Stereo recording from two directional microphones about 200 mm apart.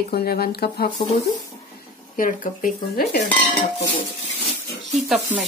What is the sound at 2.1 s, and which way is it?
Speech, 45° left (ahead or behind).